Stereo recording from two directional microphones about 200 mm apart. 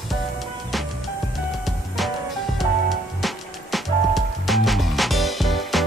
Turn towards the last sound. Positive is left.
turn(degrees=0)  # may be behind; listen again after turning